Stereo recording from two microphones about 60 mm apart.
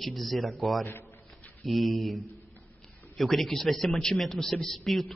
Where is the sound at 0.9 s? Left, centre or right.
Left.